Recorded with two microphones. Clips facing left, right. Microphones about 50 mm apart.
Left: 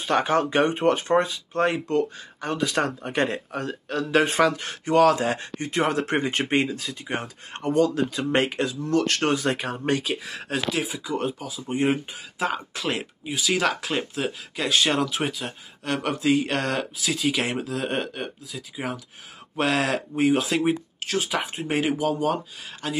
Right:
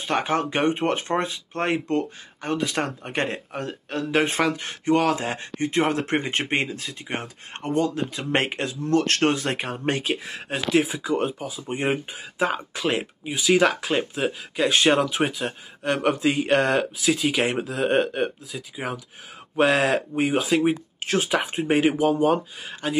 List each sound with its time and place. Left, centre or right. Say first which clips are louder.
0.1 s speech: left 2 dB; centre
1.6 s speech: left 1 dB; right
2.4 s speech: left 1 dB; centre
6.4 s speech: left 1 dB; centre
6.8 s speech: left 1 dB; centre
7.7 s speech: left 2 dB; right
10.7 s speech: right 6 dB; right
11.1 s speech: left 1 dB; centre
14.7 s speech: right 2 dB; right; by 20.7 s centre
21.0 s speech: right 3 dB; right
21.3 s speech: right 4 dB; centre